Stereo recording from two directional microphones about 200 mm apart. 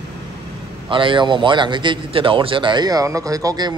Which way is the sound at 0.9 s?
25° right (ahead or behind).